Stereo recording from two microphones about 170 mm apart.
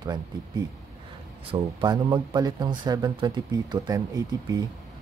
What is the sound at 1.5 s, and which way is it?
Speech, 25° right (ahead or behind).